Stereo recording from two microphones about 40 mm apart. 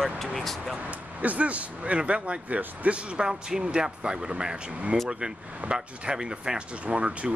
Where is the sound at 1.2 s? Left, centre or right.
Right.